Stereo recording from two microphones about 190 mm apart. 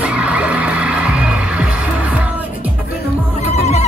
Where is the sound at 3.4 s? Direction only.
35° left (ahead or behind).